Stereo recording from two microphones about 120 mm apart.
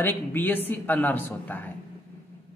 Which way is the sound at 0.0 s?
15° left (ahead or behind).